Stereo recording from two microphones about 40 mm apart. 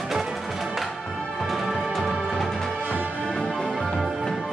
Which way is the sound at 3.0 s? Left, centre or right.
Right.